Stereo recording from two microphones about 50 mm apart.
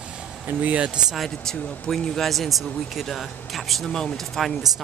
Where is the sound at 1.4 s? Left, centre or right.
Centre.